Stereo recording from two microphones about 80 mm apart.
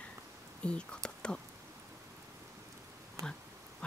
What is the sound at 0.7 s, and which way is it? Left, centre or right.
Speech, centre.